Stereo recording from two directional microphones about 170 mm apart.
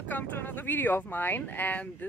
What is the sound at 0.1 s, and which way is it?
Speech, 10° left (ahead or behind).